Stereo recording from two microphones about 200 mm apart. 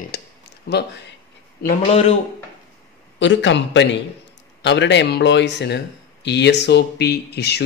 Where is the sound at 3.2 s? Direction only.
65° left (ahead or behind).